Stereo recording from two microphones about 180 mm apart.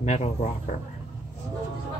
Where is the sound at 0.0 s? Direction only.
40° left (ahead or behind).